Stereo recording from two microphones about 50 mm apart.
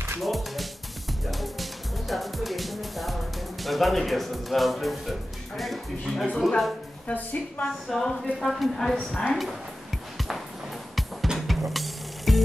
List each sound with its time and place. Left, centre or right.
0.2 s speech: centre
1.2 s music: centre
3.6 s speech: centre
7.1 s a woman's voice: left
7.6 s a woman's voice: centre
10.1 s music: centre